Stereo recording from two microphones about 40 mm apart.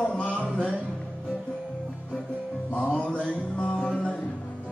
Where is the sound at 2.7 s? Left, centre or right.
Left.